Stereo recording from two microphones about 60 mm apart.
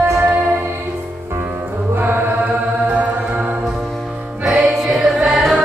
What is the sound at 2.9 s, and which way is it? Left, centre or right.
Music, right.